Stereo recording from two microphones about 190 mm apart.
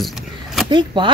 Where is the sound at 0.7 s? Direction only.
25° right (ahead or behind).